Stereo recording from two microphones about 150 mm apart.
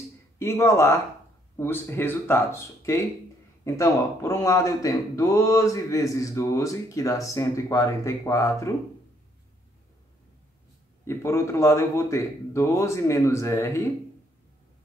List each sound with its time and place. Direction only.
0.4 s speech: 15° left (ahead or behind)
11.1 s speech: 20° left (ahead or behind)